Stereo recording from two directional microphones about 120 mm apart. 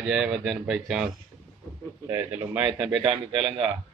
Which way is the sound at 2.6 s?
5° right (ahead or behind).